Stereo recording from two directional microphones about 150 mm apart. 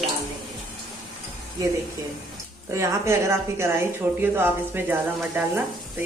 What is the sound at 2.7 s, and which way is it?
Speech, 20° right (ahead or behind).